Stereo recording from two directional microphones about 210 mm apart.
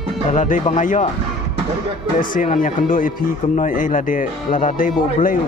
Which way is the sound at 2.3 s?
40° left (ahead or behind).